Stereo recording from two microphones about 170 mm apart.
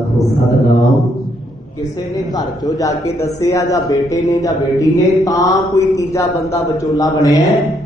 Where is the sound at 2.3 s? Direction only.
20° left (ahead or behind).